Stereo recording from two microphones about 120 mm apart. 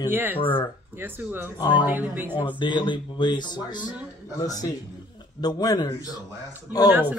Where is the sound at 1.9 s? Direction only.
15° right (ahead or behind).